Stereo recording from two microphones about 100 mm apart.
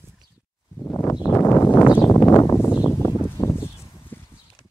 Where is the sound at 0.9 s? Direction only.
25° left (ahead or behind).